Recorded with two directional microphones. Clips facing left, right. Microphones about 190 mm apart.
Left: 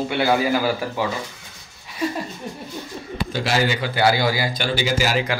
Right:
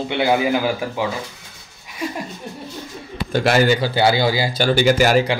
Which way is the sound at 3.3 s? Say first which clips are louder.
Right 6 dB; 55° right (ahead or behind).